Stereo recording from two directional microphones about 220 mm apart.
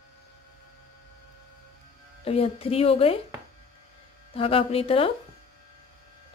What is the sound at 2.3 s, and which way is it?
Speech, 25° left (ahead or behind).